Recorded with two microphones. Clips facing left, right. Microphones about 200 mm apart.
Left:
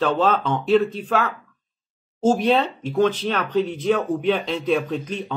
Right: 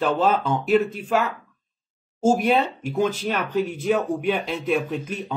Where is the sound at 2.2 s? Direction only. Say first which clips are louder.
Left 1 dB; 10° right (ahead or behind).